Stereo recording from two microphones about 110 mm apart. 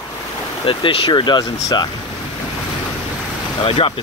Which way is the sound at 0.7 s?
55° left (ahead or behind).